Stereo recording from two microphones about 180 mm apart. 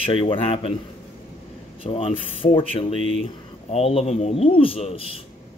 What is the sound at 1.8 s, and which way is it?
Speech, 30° left (ahead or behind).